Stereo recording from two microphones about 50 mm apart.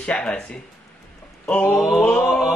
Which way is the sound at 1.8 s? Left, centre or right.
Centre.